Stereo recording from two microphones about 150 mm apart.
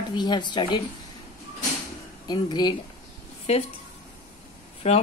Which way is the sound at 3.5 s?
45° left (ahead or behind).